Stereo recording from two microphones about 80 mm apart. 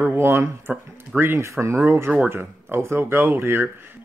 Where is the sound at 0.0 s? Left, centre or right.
Right.